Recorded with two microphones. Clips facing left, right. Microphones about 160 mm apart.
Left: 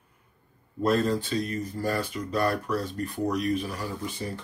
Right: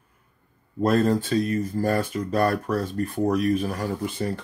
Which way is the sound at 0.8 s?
50° right (ahead or behind).